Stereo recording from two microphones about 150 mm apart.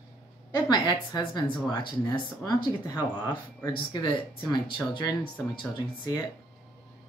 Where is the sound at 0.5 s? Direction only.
30° left (ahead or behind).